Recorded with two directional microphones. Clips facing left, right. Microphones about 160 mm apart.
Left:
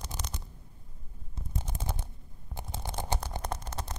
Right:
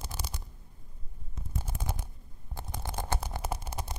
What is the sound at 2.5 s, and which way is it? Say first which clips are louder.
Stomach rumble: even; 20° left (ahead or behind).